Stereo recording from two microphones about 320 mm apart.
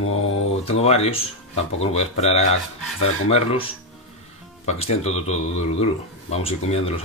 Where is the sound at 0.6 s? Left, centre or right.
Centre.